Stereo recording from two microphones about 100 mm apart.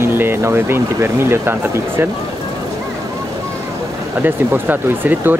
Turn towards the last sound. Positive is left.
turn(degrees=-20)  # may be behind; listen again after turning